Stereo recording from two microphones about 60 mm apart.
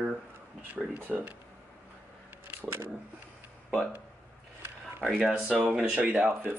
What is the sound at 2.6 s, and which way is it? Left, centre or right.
Speech, right.